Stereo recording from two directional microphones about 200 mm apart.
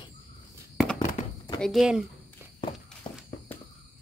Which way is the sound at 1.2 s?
35° left (ahead or behind).